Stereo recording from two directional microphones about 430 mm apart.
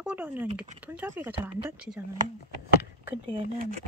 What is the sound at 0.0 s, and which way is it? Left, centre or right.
Speech, centre.